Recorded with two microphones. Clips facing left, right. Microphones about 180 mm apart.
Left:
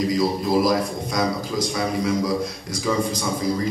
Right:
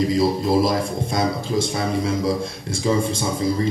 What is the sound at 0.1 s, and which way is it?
A man's voice, 25° right (ahead or behind).